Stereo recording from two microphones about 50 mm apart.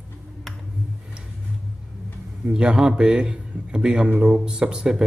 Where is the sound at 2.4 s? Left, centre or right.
Centre.